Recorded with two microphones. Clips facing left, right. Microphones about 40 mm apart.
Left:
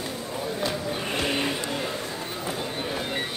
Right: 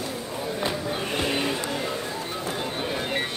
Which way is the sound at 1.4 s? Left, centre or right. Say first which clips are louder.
Right 1 dB; centre.